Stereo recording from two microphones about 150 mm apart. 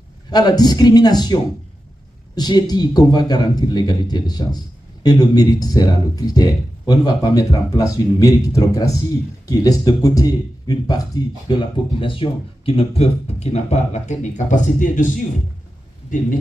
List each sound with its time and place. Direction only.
0.3 s speech: 25° left (ahead or behind)
12.0 s speech: 35° left (ahead or behind); by 15.0 s 60° left (ahead or behind)